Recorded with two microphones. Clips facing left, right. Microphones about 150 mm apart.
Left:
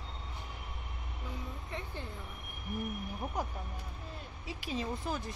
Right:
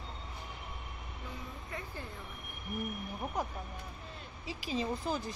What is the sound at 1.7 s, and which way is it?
Speech, 25° left (ahead or behind).